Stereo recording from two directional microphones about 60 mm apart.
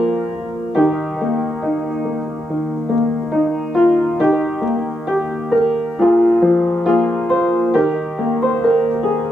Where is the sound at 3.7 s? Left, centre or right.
Centre.